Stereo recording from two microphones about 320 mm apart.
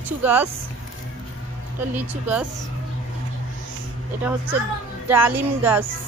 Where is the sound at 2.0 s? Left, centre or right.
Centre.